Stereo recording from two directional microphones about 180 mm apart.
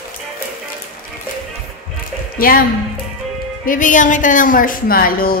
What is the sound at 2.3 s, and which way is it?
Speech, 50° left (ahead or behind).